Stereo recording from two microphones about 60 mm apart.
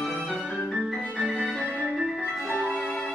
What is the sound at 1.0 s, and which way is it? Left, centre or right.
Music, centre.